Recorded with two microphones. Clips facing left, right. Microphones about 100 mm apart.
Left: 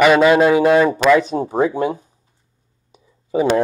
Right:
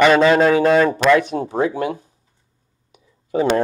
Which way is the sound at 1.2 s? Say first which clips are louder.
Left 2 dB; 25° left (ahead or behind).